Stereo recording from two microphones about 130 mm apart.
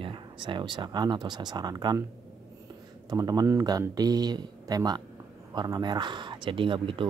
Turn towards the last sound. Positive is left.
turn(degrees=-40)  # may be behind; listen again after turning